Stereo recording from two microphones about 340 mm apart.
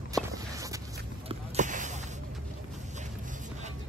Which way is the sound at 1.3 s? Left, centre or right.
Right.